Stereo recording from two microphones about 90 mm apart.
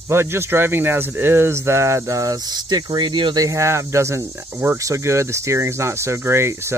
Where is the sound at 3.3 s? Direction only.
35° right (ahead or behind).